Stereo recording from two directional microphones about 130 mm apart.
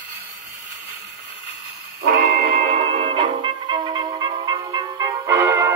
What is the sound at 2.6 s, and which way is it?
Music, 50° right (ahead or behind).